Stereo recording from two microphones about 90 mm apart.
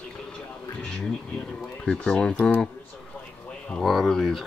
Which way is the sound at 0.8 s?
10° left (ahead or behind).